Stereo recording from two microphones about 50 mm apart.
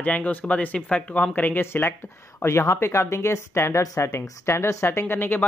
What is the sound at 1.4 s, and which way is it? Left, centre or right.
Speech, left.